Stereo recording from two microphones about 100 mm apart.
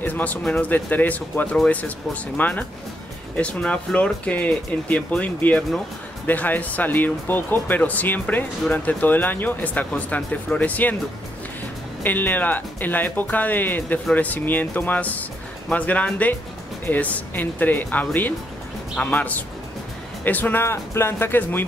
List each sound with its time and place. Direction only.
0.0 s speech: 15° left (ahead or behind)
12.0 s speech: 20° left (ahead or behind)